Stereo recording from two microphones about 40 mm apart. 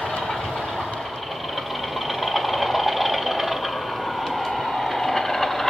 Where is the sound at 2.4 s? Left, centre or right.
Centre.